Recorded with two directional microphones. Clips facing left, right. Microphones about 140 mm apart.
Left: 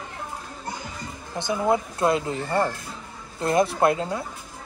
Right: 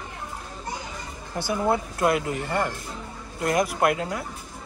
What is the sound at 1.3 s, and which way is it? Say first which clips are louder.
Speech: left 1 dB; 20° left (ahead or behind).